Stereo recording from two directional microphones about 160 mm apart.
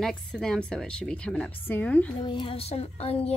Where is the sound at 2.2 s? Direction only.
30° left (ahead or behind).